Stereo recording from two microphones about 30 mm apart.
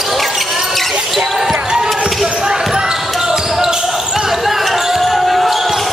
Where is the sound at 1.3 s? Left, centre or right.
Centre.